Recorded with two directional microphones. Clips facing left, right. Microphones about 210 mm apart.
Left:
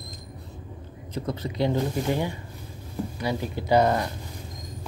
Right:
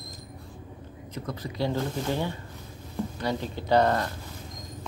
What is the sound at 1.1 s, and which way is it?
Speech, 25° left (ahead or behind).